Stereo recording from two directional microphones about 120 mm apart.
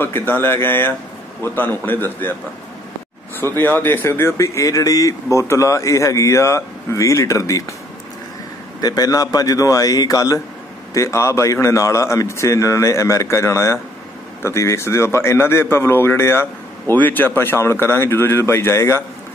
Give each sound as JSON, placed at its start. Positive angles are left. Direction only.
{"t": 0.0, "sound": "speech", "side_deg": 15}
{"t": 3.5, "sound": "speech", "side_deg": 15}
{"t": 8.8, "sound": "speech", "side_deg": 30}